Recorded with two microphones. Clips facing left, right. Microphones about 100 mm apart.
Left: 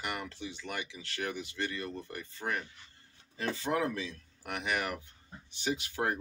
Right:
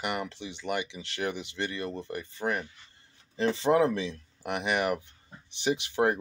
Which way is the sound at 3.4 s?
25° right (ahead or behind).